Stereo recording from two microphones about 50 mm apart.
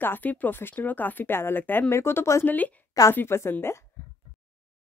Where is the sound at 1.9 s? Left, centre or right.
Left.